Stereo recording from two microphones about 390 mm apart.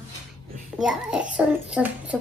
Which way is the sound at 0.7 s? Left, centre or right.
Centre.